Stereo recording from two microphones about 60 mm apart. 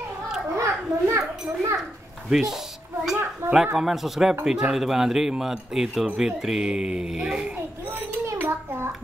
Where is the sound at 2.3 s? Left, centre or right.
Centre.